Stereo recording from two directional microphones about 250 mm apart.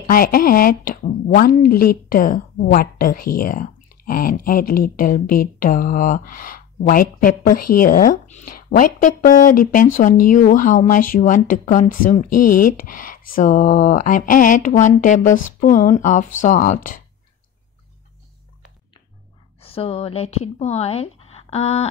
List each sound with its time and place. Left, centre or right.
0.0 s speech: left
19.6 s speech: left